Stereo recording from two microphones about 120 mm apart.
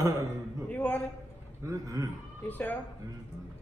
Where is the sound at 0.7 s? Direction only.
10° left (ahead or behind).